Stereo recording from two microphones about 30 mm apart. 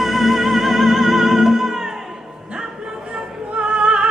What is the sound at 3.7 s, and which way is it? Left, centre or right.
Music, right.